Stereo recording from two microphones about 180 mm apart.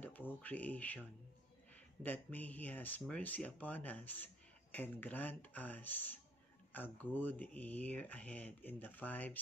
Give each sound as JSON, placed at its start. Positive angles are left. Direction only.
{"t": 0.0, "sound": "speech", "side_deg": 10}
{"t": 2.0, "sound": "speech", "side_deg": 10}